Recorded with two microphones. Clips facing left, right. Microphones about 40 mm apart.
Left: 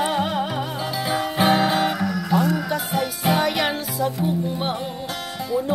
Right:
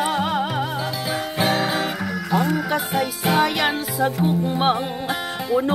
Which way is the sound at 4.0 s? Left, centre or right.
Right.